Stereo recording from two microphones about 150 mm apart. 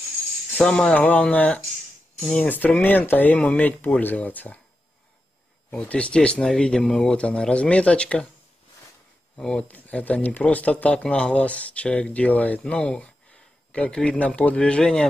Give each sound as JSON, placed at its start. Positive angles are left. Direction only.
{"t": 0.5, "sound": "speech", "side_deg": 5}
{"t": 5.7, "sound": "speech", "side_deg": 10}
{"t": 9.4, "sound": "speech", "side_deg": 5}